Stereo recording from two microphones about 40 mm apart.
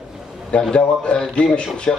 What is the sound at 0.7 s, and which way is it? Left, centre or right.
Speech, left.